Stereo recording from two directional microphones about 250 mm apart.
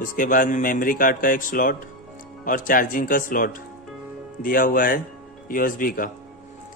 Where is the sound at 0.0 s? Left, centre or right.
Left.